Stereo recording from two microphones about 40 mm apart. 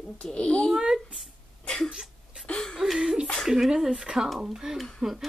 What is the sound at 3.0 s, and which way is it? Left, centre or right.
Speech, right.